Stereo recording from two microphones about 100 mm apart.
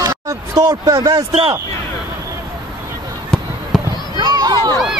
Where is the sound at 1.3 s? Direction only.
75° right (ahead or behind).